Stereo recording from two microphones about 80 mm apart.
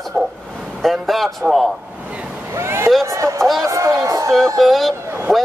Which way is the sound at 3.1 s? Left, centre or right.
Right.